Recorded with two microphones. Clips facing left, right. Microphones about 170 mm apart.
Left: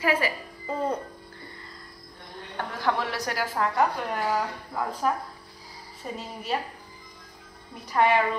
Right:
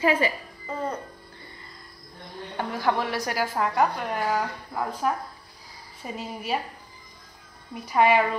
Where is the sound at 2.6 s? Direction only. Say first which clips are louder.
Right 2 dB; 5° right (ahead or behind).